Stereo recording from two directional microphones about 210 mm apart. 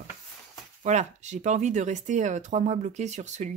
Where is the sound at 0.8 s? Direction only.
35° right (ahead or behind).